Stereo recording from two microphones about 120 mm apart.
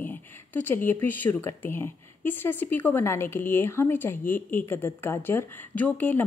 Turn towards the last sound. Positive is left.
turn(degrees=15)  # may be behind; listen again after turning